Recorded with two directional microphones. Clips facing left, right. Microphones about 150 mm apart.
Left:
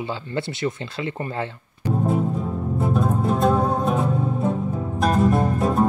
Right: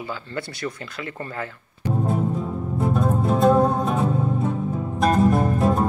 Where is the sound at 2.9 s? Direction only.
Centre (ahead or behind).